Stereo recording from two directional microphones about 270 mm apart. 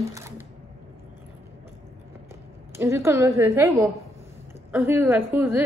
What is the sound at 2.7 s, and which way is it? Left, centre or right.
A woman's voice, centre.